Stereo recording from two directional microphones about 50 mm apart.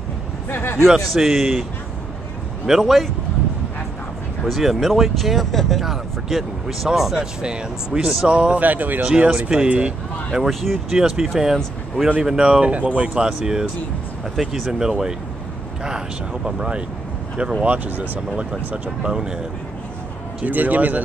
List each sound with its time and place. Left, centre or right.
0.5 s speech: left
0.8 s speech: centre
4.5 s speech: centre; by 8.6 s right
8.6 s speech: right
9.0 s speech: right
10.5 s speech: centre
10.9 s speech: centre
16.4 s speech: centre
17.6 s speech: right
18.3 s speech: centre
20.4 s speech: right